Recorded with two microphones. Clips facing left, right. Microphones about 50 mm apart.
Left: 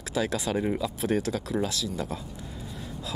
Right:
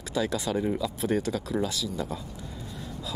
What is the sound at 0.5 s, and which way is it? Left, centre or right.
Speech, centre.